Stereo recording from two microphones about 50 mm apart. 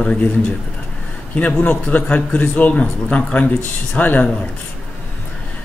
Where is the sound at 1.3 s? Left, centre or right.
Left.